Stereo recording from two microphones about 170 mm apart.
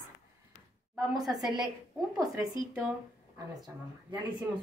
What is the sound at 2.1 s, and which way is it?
Speech, 20° right (ahead or behind).